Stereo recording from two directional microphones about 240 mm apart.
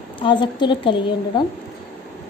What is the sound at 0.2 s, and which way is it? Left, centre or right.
A woman's voice, centre.